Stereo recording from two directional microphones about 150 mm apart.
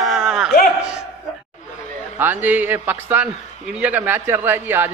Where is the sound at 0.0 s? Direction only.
5° right (ahead or behind).